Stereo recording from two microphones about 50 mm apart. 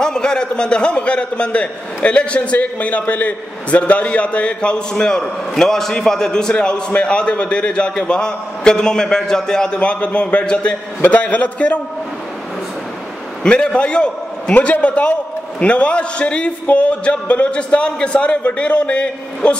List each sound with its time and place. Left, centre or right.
0.0 s a man's voice: centre
13.4 s a man's voice: centre